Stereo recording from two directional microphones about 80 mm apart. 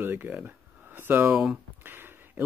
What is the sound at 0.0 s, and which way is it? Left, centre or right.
Speech, right.